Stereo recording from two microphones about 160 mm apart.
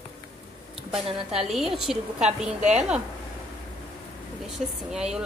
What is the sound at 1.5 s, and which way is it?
Speech, centre (ahead or behind).